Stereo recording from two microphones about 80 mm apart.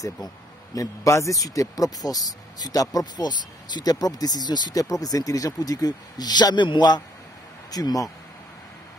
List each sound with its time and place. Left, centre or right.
0.7 s speech: left
7.7 s speech: left